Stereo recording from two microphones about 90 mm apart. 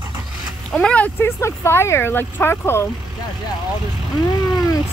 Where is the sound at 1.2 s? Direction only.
30° left (ahead or behind).